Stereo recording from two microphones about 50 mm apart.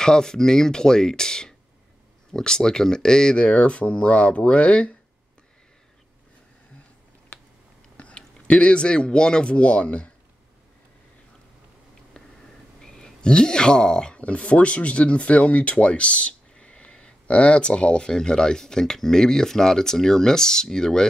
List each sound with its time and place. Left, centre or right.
0.0 s speech: centre
8.0 s speech: left
12.8 s speech: centre